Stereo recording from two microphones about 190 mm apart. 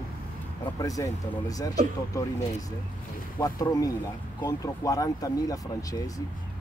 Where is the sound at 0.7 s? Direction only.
20° left (ahead or behind).